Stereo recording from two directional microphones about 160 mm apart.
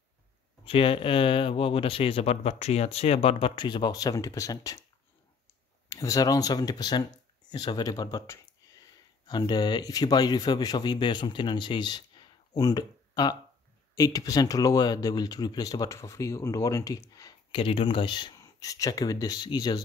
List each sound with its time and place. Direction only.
0.7 s speech: 35° left (ahead or behind)
5.9 s speech: 20° left (ahead or behind)